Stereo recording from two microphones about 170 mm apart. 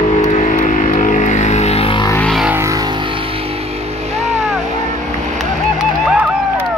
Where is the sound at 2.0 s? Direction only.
15° left (ahead or behind).